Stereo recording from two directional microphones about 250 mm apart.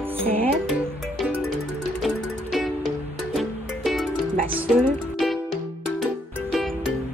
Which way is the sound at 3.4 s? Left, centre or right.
Centre.